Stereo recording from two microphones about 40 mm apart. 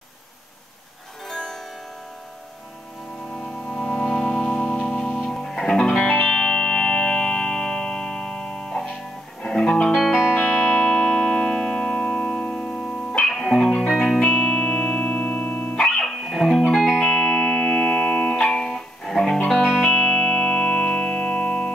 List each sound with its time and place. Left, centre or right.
1.2 s music: centre
3.4 s music: left
6.0 s music: left
7.1 s music: centre
10.1 s music: left
10.5 s music: left
13.3 s music: centre
14.2 s music: left
19.0 s music: centre